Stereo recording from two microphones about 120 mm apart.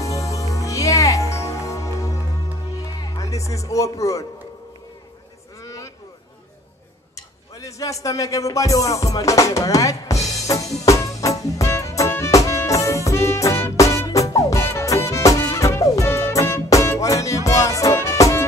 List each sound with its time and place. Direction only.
0.0 s music: 25° left (ahead or behind)
3.0 s speech: 25° left (ahead or behind)
5.6 s a sound: 25° left (ahead or behind)
7.2 s music: 25° left (ahead or behind)